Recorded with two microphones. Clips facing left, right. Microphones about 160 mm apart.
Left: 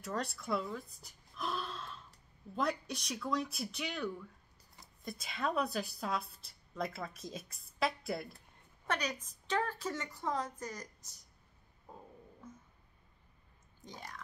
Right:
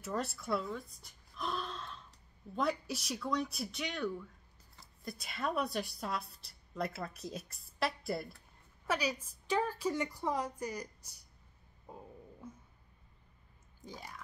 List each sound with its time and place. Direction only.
0.0 s a woman's voice: centre (ahead or behind)
12.4 s a sound: 10° right (ahead or behind)
13.8 s speech: 5° right (ahead or behind)